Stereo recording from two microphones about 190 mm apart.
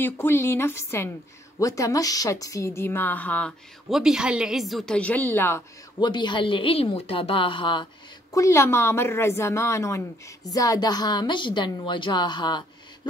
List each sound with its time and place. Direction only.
0.0 s speech: 10° left (ahead or behind)
5.9 s a woman's voice: 25° left (ahead or behind)